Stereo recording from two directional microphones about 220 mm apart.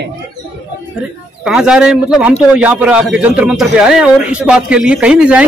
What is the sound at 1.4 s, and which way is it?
Speech, 5° right (ahead or behind).